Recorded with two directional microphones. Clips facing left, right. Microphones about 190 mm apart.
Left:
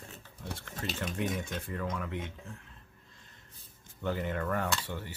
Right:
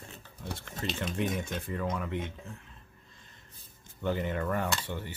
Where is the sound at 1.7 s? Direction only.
20° right (ahead or behind).